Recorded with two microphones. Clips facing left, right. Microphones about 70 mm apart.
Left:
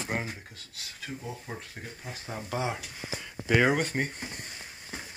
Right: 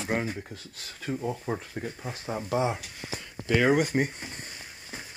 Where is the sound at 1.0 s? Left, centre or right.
Right.